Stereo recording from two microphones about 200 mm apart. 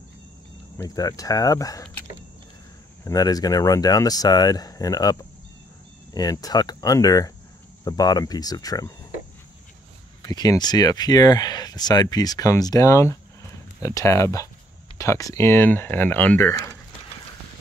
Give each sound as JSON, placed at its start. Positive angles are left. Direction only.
{"t": 0.7, "sound": "speech", "side_deg": 20}
{"t": 6.1, "sound": "speech", "side_deg": 20}
{"t": 10.2, "sound": "speech", "side_deg": 20}